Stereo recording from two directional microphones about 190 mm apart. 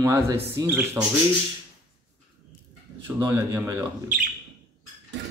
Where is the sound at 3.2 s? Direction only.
15° right (ahead or behind).